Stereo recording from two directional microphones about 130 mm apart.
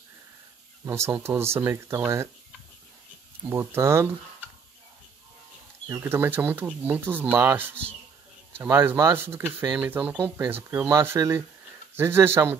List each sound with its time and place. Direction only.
0.8 s speech: 20° right (ahead or behind)
3.4 s speech: 20° right (ahead or behind)
5.9 s speech: 20° right (ahead or behind)